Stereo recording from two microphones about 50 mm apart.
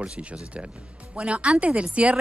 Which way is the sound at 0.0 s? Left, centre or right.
Right.